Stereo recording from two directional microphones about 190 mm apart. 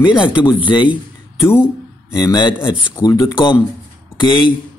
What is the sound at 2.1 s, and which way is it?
Speech, 20° left (ahead or behind).